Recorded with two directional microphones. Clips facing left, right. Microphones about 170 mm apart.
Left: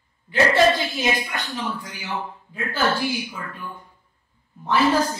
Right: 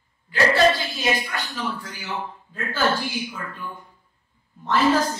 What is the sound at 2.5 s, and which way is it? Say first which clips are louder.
A woman's voice: even; 15° left (ahead or behind).